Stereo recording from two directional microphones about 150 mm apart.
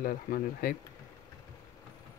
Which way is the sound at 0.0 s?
75° left (ahead or behind).